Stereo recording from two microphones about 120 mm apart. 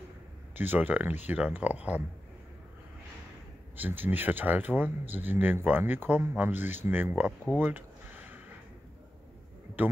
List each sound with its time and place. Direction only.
0.6 s speech: 15° right (ahead or behind)
3.7 s speech: 15° right (ahead or behind)
7.5 s a sound: 15° right (ahead or behind)